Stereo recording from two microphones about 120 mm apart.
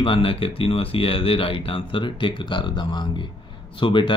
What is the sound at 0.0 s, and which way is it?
Speech, 50° left (ahead or behind).